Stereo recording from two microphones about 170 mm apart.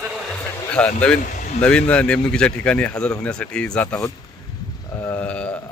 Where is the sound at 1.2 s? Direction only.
50° left (ahead or behind).